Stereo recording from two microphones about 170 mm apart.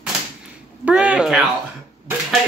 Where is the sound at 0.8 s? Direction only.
5° right (ahead or behind).